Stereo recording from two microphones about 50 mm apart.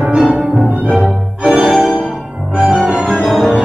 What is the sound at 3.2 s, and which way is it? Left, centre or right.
Music, centre.